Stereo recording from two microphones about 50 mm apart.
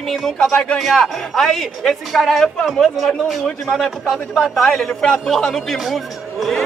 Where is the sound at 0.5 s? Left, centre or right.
Left.